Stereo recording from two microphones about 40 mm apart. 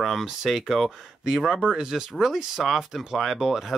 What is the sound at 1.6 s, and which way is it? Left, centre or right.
Speech, centre.